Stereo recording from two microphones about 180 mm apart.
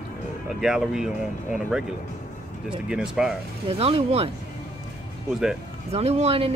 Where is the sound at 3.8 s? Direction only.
30° right (ahead or behind).